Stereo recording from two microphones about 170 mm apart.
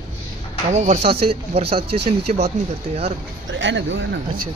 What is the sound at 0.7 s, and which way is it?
Speech, 40° right (ahead or behind).